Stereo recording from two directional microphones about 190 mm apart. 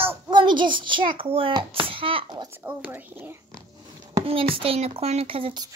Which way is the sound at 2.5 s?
10° right (ahead or behind).